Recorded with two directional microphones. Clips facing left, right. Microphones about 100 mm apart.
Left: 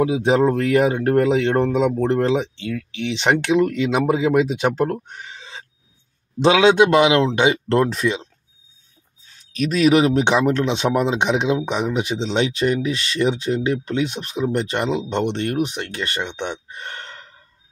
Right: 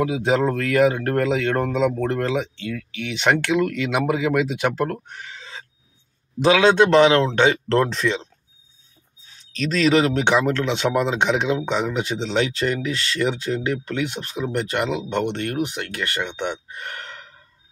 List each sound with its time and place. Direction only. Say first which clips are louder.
0.1 s speech: left 3 dB; 20° left (ahead or behind)
5.0 s a sound: left 1 dB; 20° left (ahead or behind)
6.4 s speech: left 2 dB; 20° left (ahead or behind)
9.5 s speech: left 3 dB; 10° left (ahead or behind)